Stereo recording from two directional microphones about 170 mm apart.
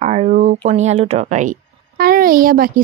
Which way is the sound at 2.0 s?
60° right (ahead or behind).